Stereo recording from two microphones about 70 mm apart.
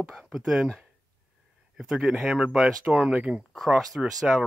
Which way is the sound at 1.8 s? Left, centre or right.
Centre.